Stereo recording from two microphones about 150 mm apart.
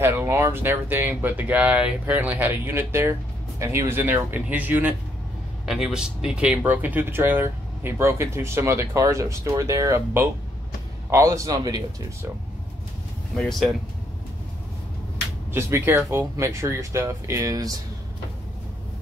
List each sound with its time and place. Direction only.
0.0 s speech: 15° right (ahead or behind)
13.4 s speech: centre (ahead or behind)
15.5 s speech: 15° right (ahead or behind)